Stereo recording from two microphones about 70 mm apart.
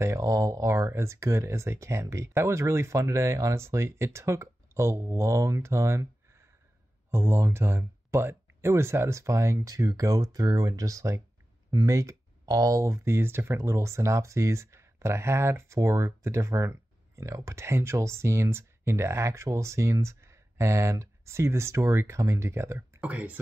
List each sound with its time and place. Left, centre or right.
0.0 s speech: right
7.1 s speech: right
22.9 s speech: right